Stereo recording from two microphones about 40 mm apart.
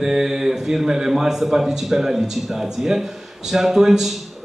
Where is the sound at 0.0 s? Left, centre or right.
Centre.